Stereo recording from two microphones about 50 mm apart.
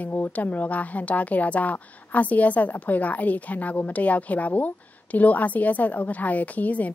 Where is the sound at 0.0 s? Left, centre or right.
Left.